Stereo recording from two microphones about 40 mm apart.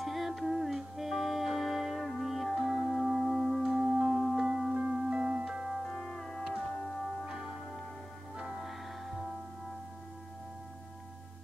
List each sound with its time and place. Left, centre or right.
0.0 s music: centre
3.6 s music: centre
4.7 s music: right
5.9 s music: centre
7.2 s music: centre
8.5 s music: centre